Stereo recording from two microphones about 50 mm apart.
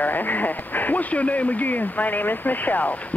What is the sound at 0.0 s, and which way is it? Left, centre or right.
Speech, left.